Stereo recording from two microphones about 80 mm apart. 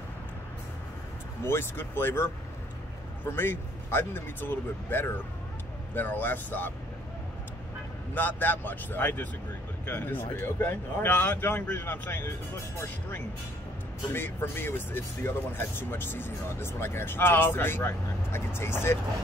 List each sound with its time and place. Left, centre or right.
1.4 s speech: left
8.1 s speech: left
14.1 s speech: left